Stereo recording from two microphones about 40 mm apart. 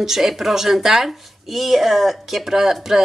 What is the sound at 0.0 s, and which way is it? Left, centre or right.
Speech, centre.